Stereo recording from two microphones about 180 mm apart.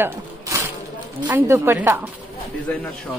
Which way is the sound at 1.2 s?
10° right (ahead or behind).